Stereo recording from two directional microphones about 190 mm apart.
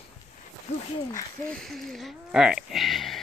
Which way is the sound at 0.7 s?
35° left (ahead or behind).